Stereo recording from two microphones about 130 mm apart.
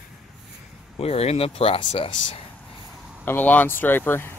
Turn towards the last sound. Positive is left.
turn(degrees=15)  # may be behind; listen again after turning